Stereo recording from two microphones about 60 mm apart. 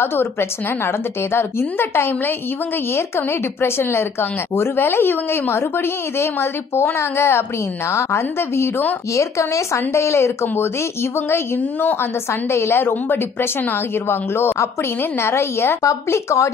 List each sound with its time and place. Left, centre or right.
0.0 s a woman's voice: left
9.1 s speech: left
10.4 s a woman's voice: left
12.3 s speech: left